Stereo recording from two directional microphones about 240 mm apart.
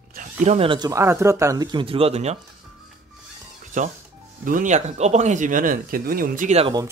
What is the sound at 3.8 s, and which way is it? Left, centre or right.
Speech, right.